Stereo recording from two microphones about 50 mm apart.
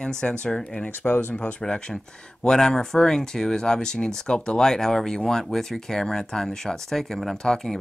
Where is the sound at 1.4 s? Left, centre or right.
Centre.